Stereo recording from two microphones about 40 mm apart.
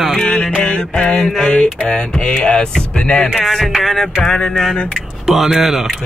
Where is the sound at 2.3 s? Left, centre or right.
Centre.